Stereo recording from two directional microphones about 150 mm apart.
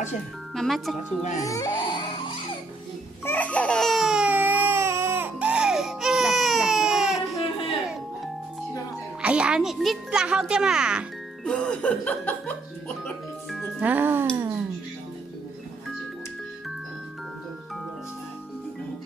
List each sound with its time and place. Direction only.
0.6 s speech: centre (ahead or behind)
1.4 s music: 20° left (ahead or behind)
3.3 s baby cry: 10° left (ahead or behind)
9.2 s a child's voice: 5° right (ahead or behind)
11.4 s speech: 5° left (ahead or behind); by 14.2 s 15° right (ahead or behind)
14.3 s a sound: 20° right (ahead or behind)